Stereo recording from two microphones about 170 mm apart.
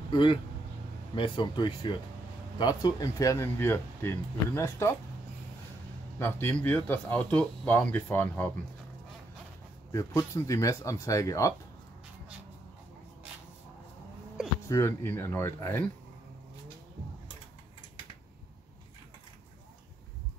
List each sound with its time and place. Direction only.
0.1 s speech: 30° left (ahead or behind)
6.1 s speech: 10° left (ahead or behind)
9.8 s speech: 20° left (ahead or behind)
14.7 s speech: 15° left (ahead or behind)